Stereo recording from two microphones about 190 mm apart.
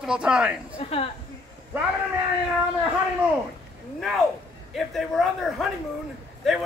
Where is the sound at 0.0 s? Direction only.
5° right (ahead or behind).